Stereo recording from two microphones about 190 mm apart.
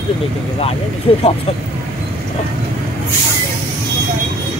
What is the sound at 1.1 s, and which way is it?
Speech, 30° left (ahead or behind).